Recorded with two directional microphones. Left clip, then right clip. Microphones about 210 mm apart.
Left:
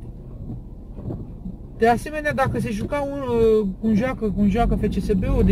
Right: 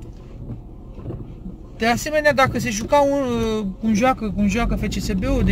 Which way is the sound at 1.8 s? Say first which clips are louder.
Even; 20° right (ahead or behind).